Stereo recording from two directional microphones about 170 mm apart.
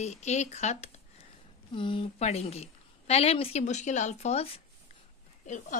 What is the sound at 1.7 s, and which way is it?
Speech, 30° left (ahead or behind).